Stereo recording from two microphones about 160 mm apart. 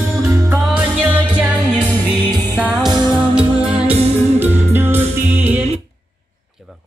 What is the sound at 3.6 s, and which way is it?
Music, 35° right (ahead or behind).